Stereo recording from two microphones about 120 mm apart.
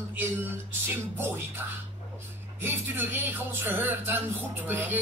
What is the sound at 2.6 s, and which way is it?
Speech, 20° right (ahead or behind).